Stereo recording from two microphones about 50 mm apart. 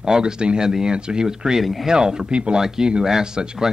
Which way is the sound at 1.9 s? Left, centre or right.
Centre.